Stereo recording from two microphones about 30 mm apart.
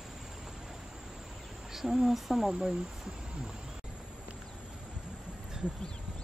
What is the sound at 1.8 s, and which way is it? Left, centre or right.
Speech, centre.